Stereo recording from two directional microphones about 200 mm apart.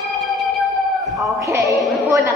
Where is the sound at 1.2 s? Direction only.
15° right (ahead or behind).